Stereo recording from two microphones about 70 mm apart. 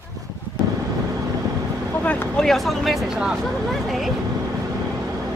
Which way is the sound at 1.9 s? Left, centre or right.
Centre.